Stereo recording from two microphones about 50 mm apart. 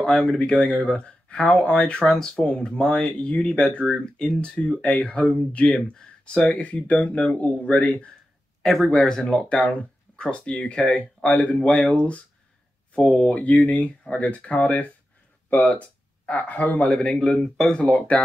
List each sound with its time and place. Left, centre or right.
0.0 s speech: centre; by 8.1 s left
8.8 s speech: centre; by 16.9 s left
16.9 s speech: centre